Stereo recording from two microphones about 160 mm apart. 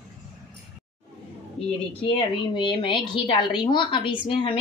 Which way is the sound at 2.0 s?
30° left (ahead or behind).